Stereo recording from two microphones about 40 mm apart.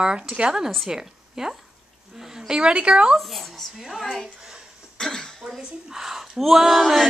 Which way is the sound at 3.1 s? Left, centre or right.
Centre.